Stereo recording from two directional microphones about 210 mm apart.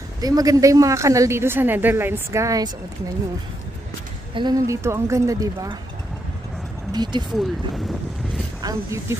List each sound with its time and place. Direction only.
0.2 s a woman's voice: 15° right (ahead or behind)
4.3 s a woman's voice: 20° right (ahead or behind)
6.9 s speech: 20° right (ahead or behind)
7.2 s speech: centre (ahead or behind)